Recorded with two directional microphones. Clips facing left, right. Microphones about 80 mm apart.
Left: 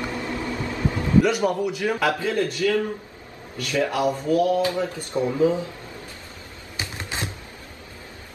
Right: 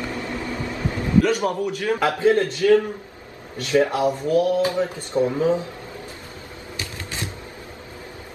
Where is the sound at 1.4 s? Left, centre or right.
Centre.